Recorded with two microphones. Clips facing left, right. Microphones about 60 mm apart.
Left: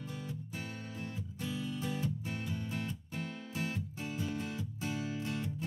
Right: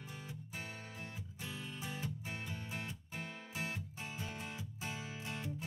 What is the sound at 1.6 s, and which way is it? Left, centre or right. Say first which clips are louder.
Music: left 7 dB; centre.